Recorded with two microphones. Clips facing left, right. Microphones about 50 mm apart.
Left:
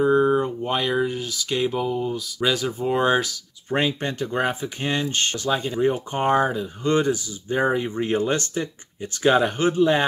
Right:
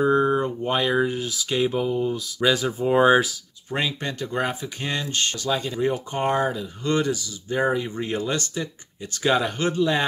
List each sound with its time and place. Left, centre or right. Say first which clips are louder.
0.0 s speech: left 1 dB; centre
3.7 s speech: left 3 dB; left